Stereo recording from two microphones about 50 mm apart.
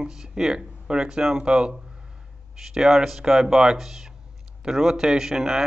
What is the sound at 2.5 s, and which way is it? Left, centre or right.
Speech, centre.